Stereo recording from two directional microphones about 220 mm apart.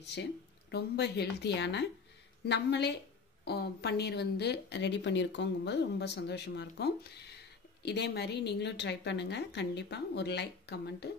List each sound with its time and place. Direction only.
0.0 s speech: 50° left (ahead or behind)